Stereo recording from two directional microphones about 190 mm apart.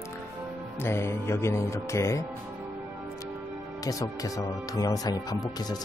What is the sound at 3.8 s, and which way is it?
Speech, 20° left (ahead or behind).